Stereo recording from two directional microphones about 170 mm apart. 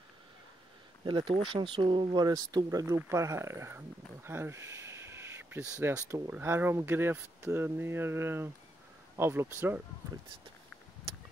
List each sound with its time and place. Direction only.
1.0 s speech: 30° right (ahead or behind)